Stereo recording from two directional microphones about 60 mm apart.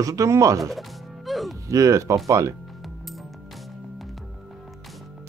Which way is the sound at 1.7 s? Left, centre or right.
Right.